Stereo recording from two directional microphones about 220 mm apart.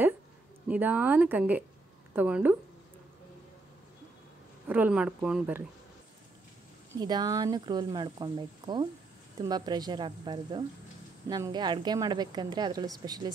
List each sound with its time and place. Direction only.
0.7 s speech: 5° right (ahead or behind)
4.6 s speech: 5° right (ahead or behind)
7.0 s a woman's voice: 20° right (ahead or behind)